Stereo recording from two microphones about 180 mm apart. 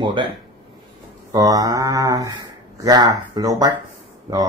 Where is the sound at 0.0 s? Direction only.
25° right (ahead or behind).